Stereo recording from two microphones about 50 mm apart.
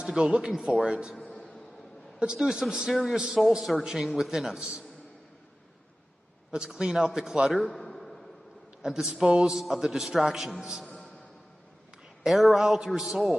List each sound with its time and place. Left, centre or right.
0.0 s a man's voice: centre
1.2 s music: centre
2.1 s a man's voice: centre
4.6 s a man's voice: centre
6.5 s a man's voice: centre
8.8 s a man's voice: centre
12.3 s a man's voice: centre